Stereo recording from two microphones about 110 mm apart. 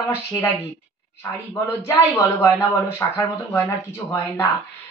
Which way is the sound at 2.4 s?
20° left (ahead or behind).